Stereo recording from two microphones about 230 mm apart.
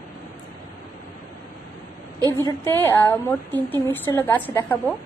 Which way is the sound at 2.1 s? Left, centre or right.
Centre.